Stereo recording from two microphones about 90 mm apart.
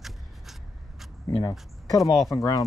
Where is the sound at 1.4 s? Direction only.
40° left (ahead or behind).